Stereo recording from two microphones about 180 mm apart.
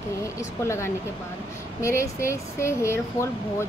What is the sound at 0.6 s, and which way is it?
Speech, 15° left (ahead or behind).